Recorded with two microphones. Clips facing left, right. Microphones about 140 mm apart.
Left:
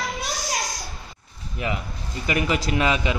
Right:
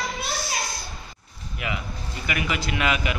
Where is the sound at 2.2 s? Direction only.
30° left (ahead or behind).